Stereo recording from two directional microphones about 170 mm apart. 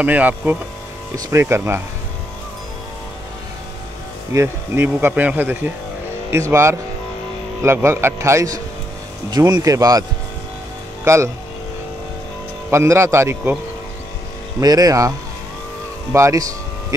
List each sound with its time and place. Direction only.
0.0 s speech: 10° right (ahead or behind)
4.3 s speech: 15° right (ahead or behind)
11.1 s speech: 20° right (ahead or behind)
12.7 s speech: 15° right (ahead or behind)
14.6 s speech: 20° right (ahead or behind)